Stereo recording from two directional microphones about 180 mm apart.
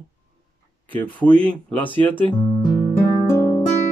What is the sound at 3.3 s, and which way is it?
Music, 15° left (ahead or behind).